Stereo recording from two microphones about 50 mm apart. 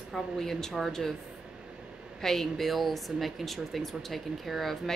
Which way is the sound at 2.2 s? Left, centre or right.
Centre.